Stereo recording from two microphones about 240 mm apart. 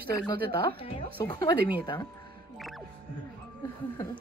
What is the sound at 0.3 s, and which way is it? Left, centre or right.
A woman's voice, left.